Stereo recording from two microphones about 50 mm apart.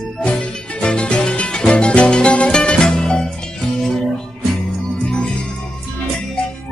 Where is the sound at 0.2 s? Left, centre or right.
Left.